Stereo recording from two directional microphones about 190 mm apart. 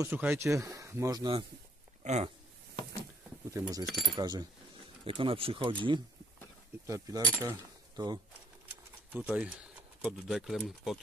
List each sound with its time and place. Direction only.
0.0 s speech: 10° right (ahead or behind)
2.0 s speech: 35° right (ahead or behind)
3.5 s speech: 20° right (ahead or behind)
3.8 s speech: centre (ahead or behind)
4.2 s speech: 20° right (ahead or behind)
9.1 s speech: 5° right (ahead or behind)